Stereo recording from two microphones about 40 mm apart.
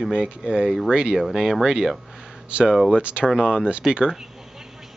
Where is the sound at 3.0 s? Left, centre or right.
Right.